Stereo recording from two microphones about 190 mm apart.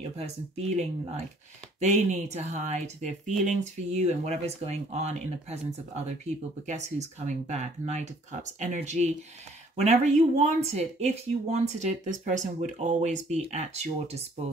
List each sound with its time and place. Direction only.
0.2 s speech: 35° right (ahead or behind)